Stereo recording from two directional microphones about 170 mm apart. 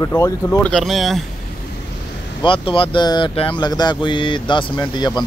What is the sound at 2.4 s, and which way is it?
Speech, 30° left (ahead or behind).